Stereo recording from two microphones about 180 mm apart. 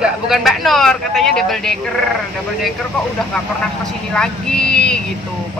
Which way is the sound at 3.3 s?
5° left (ahead or behind).